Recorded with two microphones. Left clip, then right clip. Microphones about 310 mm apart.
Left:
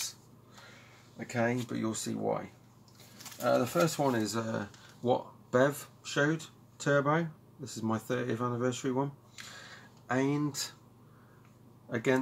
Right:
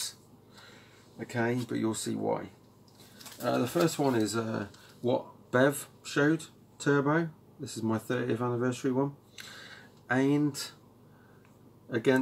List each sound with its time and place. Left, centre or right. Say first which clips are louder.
1.2 s speech: even; centre
3.5 s speech: right 1 dB; centre
11.9 s speech: right 3 dB; centre